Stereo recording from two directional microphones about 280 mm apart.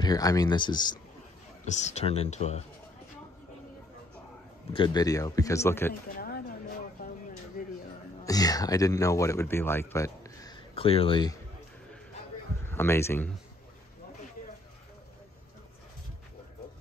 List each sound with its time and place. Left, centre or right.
0.0 s a man's voice: centre
4.7 s a man's voice: centre
6.1 s a sound: left
7.6 s a sound: left
8.2 s speech: centre
12.6 s a man's voice: centre